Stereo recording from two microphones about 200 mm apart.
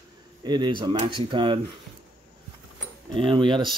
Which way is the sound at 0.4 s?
20° right (ahead or behind).